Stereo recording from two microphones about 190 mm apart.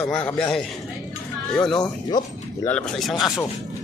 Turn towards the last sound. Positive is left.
turn(degrees=5)  # may be behind; listen again after turning